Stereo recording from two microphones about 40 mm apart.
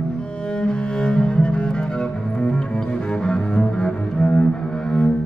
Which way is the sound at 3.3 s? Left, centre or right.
Centre.